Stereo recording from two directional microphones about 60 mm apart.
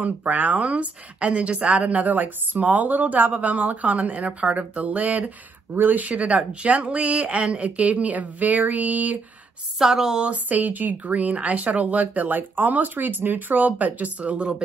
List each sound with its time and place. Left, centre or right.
0.0 s a woman's voice: right
9.8 s speech: centre
10.2 s a woman's voice: right